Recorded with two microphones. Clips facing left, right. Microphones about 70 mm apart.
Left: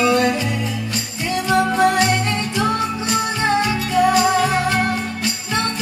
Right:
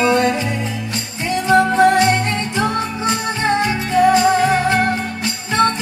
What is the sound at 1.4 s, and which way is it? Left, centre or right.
Music, right.